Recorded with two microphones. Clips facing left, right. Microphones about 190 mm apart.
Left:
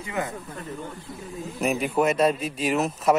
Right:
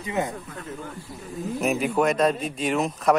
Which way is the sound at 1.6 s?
Centre (ahead or behind).